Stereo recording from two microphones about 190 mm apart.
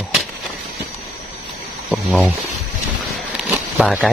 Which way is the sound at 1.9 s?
5° right (ahead or behind).